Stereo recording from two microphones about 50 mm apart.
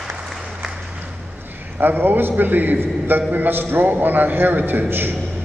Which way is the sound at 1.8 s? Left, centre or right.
Right.